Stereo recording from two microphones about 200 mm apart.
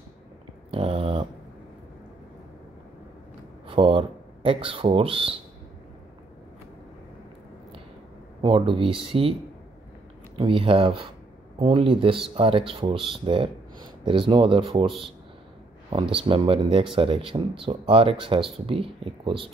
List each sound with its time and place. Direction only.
0.7 s dog: 30° right (ahead or behind)
3.6 s speech: 25° right (ahead or behind)
8.4 s speech: 25° right (ahead or behind)
10.3 s speech: 25° right (ahead or behind)
14.9 s speech: centre (ahead or behind)
15.9 s speech: 25° right (ahead or behind)